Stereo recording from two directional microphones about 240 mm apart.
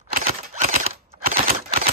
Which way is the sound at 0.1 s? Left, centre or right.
Right.